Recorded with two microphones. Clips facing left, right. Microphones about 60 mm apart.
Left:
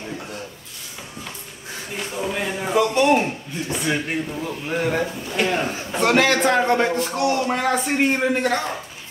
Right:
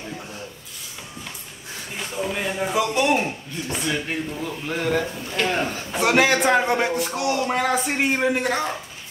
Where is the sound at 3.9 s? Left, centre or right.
Centre.